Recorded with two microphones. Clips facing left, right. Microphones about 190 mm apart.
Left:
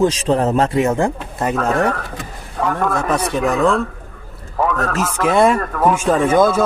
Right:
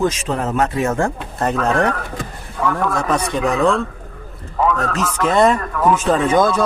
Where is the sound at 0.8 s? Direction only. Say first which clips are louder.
Left 2 dB; 15° left (ahead or behind).